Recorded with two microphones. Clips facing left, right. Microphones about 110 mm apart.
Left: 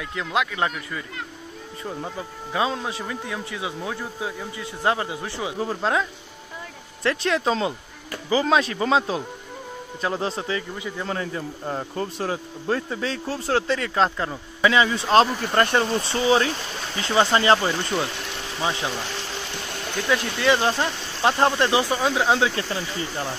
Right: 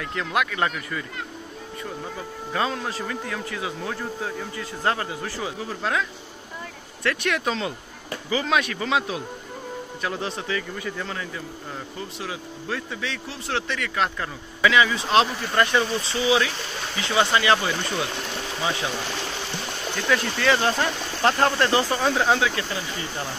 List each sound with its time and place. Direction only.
0.0 s speech: 15° left (ahead or behind)
2.5 s a man's voice: 15° left (ahead or behind)
20.1 s a man's voice: 20° left (ahead or behind)
22.4 s speech: 30° left (ahead or behind)